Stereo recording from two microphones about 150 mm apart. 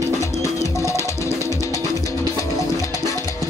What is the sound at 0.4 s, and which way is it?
Music, 20° left (ahead or behind).